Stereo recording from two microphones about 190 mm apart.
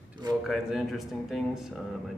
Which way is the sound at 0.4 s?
Centre (ahead or behind).